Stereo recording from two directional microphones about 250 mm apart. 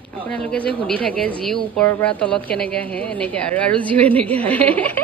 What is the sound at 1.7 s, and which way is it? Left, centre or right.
A woman's voice, centre.